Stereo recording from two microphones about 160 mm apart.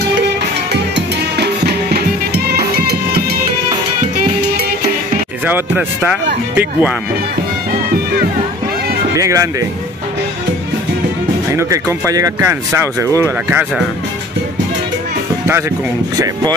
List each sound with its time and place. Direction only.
0.9 s music: 90° right
6.5 s speech: 10° right (ahead or behind)
9.1 s speech: 20° right (ahead or behind)
11.5 s speech: 20° right (ahead or behind)